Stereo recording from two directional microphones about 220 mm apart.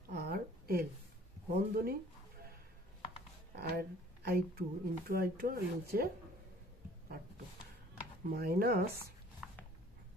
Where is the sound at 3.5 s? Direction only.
45° right (ahead or behind).